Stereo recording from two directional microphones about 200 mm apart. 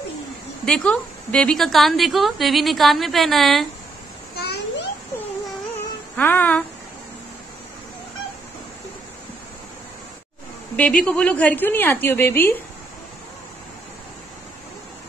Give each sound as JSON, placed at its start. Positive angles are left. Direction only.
{"t": 0.7, "sound": "a woman's voice", "side_deg": 5}
{"t": 4.4, "sound": "a sound", "side_deg": 55}
{"t": 6.1, "sound": "a woman's voice", "side_deg": 10}
{"t": 10.8, "sound": "a woman's voice", "side_deg": 5}